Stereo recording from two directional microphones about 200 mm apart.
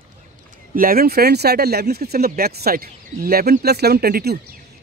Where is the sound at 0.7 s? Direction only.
45° right (ahead or behind).